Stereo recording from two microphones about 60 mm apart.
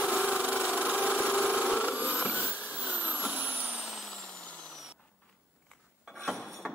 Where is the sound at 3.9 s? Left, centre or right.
Centre.